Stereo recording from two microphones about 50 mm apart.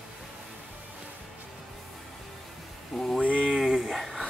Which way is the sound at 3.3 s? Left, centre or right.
Right.